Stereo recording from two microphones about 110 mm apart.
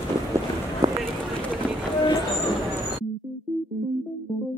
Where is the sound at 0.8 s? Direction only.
35° right (ahead or behind).